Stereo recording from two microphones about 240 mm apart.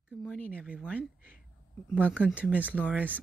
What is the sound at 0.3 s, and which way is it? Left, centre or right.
Speech, centre.